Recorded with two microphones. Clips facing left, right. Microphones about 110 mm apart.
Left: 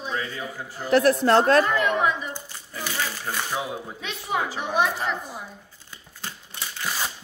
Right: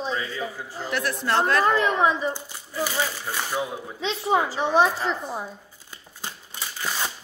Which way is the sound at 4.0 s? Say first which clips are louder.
Right 6 dB; 30° right (ahead or behind).